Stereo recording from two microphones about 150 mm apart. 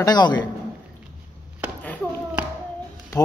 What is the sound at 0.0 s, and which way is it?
Speech, 30° left (ahead or behind).